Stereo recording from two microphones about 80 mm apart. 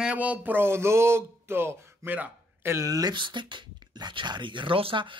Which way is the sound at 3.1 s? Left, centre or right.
Right.